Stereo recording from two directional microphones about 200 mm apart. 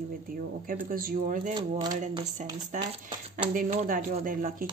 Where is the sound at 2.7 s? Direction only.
40° right (ahead or behind).